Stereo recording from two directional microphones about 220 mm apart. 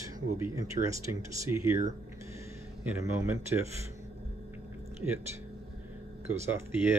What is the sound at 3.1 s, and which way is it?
Speech, 10° right (ahead or behind).